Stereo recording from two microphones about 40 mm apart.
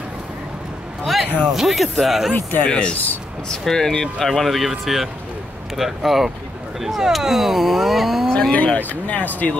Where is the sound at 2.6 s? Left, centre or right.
Left.